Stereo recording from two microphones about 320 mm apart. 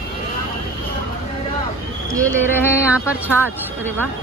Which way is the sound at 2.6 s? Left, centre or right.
Centre.